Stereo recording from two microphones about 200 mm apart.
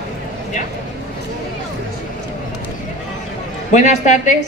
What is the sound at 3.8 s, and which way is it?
Speech, 35° left (ahead or behind).